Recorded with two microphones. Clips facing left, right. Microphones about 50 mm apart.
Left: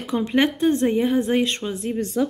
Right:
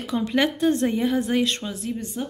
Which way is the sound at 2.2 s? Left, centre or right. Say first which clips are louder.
Left 12 dB; left.